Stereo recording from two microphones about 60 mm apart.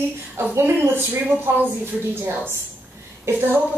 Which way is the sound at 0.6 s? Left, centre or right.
Right.